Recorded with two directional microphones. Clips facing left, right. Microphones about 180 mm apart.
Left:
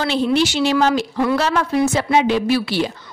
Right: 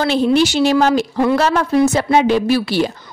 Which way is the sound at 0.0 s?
45° right (ahead or behind).